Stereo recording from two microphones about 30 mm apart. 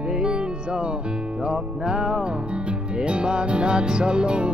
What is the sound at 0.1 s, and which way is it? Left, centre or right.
Music, right.